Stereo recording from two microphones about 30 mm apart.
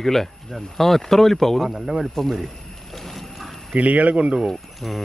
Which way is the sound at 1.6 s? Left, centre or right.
Centre.